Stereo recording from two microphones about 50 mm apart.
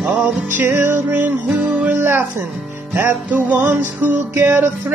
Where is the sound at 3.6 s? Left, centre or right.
Right.